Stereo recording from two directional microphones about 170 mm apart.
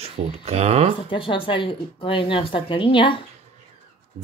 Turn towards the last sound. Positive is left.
turn(degrees=30)  # may be behind; listen again after turning